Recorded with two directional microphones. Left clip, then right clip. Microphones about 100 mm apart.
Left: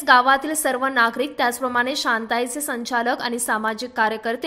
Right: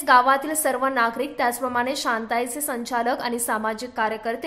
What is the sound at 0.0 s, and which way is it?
A woman's voice, 25° left (ahead or behind).